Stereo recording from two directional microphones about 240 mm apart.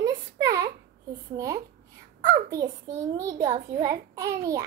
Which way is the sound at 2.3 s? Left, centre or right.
Centre.